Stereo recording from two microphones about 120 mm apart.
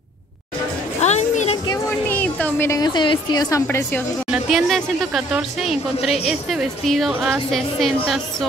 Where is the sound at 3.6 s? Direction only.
15° left (ahead or behind).